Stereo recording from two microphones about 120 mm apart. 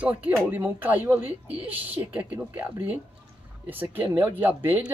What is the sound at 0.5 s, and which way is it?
A woman's voice, 15° right (ahead or behind).